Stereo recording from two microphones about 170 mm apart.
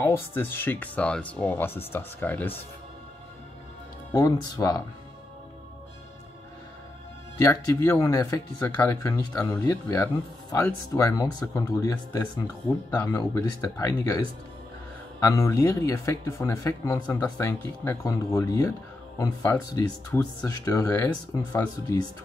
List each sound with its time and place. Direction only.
0.0 s speech: 10° left (ahead or behind)
4.1 s speech: 20° left (ahead or behind)
7.4 s speech: 20° left (ahead or behind)